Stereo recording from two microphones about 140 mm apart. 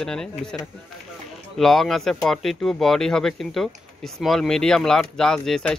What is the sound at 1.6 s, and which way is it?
Speech, centre (ahead or behind).